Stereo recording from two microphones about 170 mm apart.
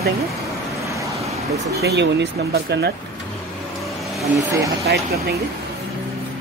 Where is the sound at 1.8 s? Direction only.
80° right.